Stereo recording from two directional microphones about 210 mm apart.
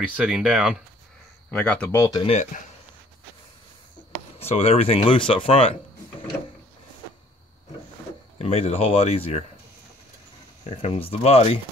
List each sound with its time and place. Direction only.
0.0 s speech: 5° right (ahead or behind)
1.5 s speech: 5° left (ahead or behind)
2.2 s speech: 30° left (ahead or behind)
4.4 s speech: 30° left (ahead or behind)
8.4 s speech: 30° left (ahead or behind)
10.6 s speech: 25° left (ahead or behind)